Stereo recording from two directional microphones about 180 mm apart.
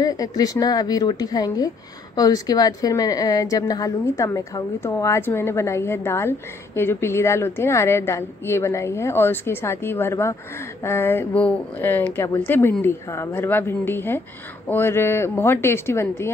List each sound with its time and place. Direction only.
0.0 s a woman's voice: 20° left (ahead or behind)